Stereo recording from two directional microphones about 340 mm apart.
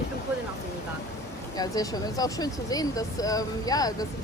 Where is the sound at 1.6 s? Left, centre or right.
Centre.